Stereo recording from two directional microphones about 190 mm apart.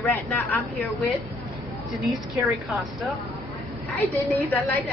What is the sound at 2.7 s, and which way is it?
Speech, centre (ahead or behind).